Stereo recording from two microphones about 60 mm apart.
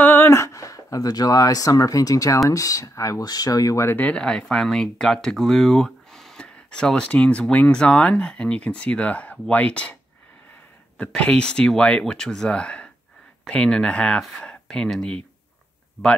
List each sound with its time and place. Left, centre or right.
0.0 s a sound: left
0.3 s speech: left
2.5 s speech: left
4.1 s speech: centre
11.1 s speech: centre